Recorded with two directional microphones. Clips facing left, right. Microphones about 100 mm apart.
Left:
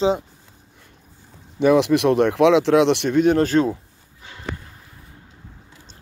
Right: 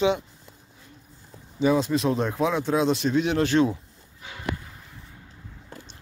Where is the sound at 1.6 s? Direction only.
75° left (ahead or behind); by 3.7 s 40° left (ahead or behind).